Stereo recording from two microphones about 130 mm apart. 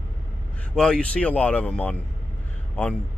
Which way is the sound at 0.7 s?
5° left (ahead or behind).